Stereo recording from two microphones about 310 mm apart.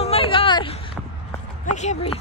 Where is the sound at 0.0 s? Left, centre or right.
Centre.